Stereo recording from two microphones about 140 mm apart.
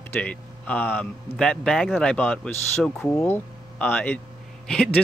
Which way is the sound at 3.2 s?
15° left (ahead or behind).